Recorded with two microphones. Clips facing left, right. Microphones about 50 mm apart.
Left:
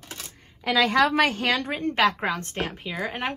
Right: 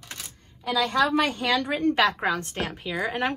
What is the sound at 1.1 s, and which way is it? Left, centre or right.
Speech, left.